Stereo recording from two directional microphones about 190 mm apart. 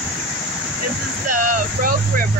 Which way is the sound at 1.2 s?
45° right (ahead or behind).